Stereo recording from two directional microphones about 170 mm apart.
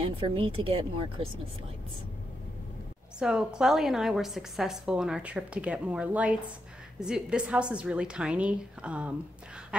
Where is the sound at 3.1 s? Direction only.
5° right (ahead or behind).